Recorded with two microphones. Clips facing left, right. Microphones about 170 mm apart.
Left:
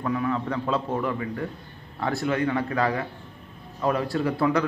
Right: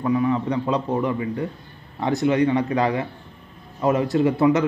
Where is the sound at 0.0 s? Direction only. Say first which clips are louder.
Right 5 dB; 10° right (ahead or behind).